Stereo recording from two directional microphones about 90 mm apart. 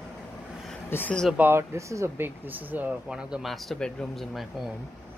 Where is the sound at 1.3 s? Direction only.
25° right (ahead or behind).